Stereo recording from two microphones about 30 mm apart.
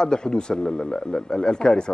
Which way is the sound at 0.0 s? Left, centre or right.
Left.